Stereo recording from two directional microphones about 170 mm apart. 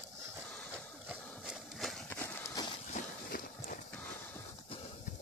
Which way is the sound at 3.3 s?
55° left (ahead or behind).